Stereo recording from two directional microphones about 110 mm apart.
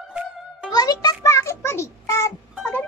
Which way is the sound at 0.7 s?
35° left (ahead or behind).